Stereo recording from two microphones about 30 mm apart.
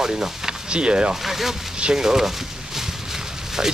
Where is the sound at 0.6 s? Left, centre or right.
Right.